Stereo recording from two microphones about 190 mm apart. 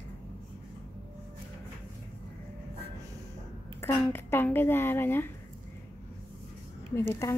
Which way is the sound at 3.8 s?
10° left (ahead or behind).